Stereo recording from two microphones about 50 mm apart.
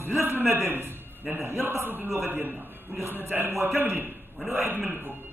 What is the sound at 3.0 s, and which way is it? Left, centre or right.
A man's voice, right.